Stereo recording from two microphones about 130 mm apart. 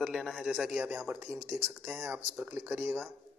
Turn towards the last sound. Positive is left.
turn(degrees=-15)  # may be behind; listen again after turning